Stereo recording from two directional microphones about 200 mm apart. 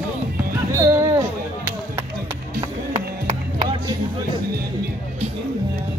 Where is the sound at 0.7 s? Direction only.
20° right (ahead or behind).